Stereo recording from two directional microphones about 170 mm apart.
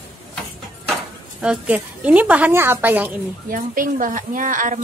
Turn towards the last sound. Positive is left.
turn(degrees=-50)  # may be behind; listen again after turning